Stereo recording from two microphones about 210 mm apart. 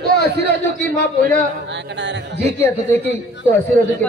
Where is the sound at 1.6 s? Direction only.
60° right (ahead or behind).